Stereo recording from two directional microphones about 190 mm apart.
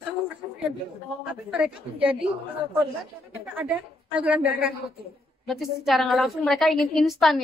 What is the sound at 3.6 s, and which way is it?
A woman's voice, 10° right (ahead or behind).